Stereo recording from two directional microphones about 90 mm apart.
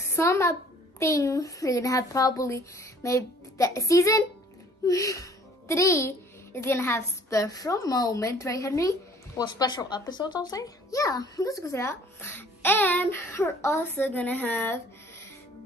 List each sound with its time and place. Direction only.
0.0 s a child's voice: 30° left (ahead or behind)
9.4 s a child's voice: 50° left (ahead or behind); by 14.8 s 20° left (ahead or behind)